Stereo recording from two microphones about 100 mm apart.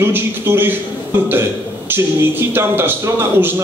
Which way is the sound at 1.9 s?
20° right (ahead or behind).